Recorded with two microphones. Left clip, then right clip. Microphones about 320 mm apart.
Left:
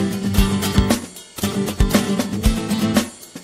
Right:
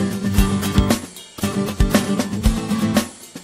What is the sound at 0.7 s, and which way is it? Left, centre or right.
Music, centre.